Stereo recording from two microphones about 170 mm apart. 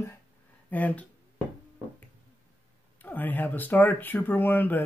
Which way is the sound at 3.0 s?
10° left (ahead or behind).